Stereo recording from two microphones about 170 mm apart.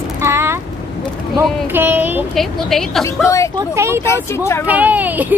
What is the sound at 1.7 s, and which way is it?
Speech, 10° right (ahead or behind).